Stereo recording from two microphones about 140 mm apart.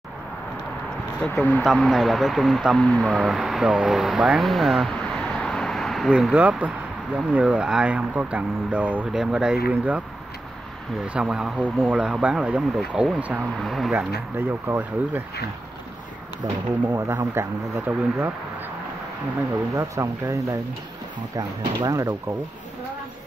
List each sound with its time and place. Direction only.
1.2 s speech: 5° left (ahead or behind); by 10.0 s 10° right (ahead or behind)
11.1 s speech: 5° right (ahead or behind)
14.7 s speech: 15° right (ahead or behind)
17.3 s speech: 15° right (ahead or behind)
19.7 s speech: 20° right (ahead or behind)